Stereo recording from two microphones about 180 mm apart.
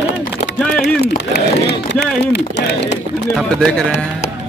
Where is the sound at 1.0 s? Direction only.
65° left (ahead or behind).